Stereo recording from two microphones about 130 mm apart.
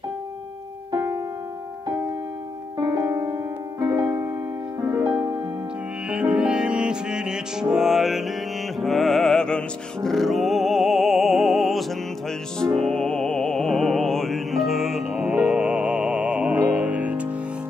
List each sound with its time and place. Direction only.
2.8 s music: 25° right (ahead or behind)
3.8 s piano: 20° right (ahead or behind)
4.9 s music: 25° right (ahead or behind)
6.0 s music: 5° right (ahead or behind)